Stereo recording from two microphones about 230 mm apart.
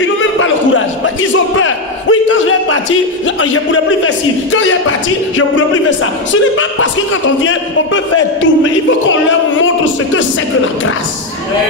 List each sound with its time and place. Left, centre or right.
0.4 s a sound: left
3.3 s speech: left
6.5 s speech: left